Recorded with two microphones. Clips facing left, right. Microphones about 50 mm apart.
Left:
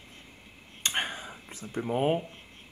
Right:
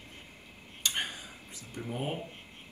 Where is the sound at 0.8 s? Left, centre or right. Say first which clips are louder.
Left 3 dB; left.